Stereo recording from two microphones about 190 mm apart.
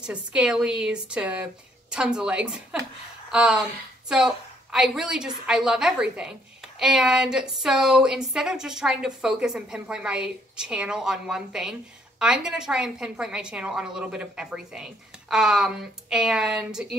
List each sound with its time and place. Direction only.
0.0 s speech: 5° right (ahead or behind)